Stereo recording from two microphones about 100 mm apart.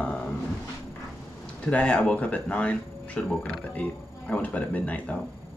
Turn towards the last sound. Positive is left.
turn(degrees=15)  # may be behind; listen again after turning